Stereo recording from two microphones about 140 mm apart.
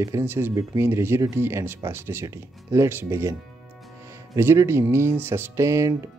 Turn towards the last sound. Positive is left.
turn(degrees=-20)  # may be behind; listen again after turning